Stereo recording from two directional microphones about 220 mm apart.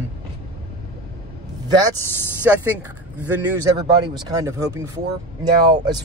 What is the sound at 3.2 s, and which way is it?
Speech, 15° right (ahead or behind).